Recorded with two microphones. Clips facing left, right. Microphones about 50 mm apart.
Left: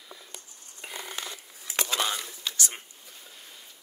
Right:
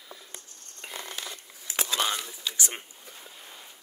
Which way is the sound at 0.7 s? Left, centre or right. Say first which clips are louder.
Even; centre.